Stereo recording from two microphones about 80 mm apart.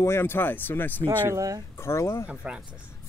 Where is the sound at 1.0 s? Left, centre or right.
Right.